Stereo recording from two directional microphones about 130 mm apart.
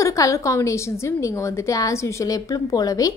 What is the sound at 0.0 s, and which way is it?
A woman's voice, 25° left (ahead or behind).